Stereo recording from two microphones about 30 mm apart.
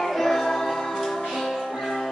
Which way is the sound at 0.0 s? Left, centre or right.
Centre.